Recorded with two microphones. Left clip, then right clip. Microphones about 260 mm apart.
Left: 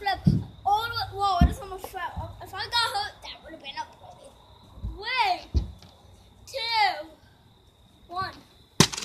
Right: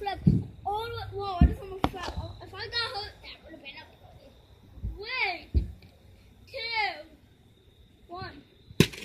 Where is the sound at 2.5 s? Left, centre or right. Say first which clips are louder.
Left 6 dB; centre.